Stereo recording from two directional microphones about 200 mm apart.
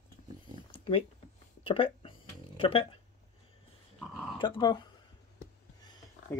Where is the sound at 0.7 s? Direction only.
25° left (ahead or behind).